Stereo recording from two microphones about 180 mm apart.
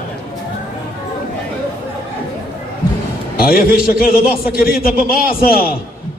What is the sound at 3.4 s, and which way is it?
A man's voice, 55° left (ahead or behind).